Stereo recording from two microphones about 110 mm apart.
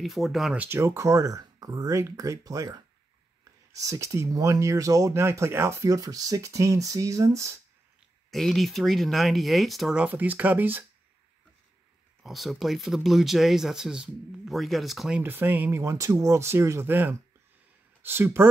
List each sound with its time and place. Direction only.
0.0 s speech: centre (ahead or behind)
0.6 s speech: 25° right (ahead or behind)
8.3 s speech: centre (ahead or behind)
10.0 s speech: 15° right (ahead or behind)
12.2 s speech: centre (ahead or behind)
15.1 s speech: 20° right (ahead or behind)